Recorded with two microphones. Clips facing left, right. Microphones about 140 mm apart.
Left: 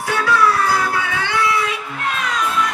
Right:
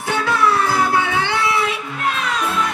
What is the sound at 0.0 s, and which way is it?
Music, 25° right (ahead or behind).